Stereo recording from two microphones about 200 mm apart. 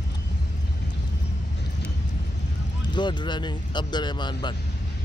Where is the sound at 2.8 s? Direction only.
20° left (ahead or behind).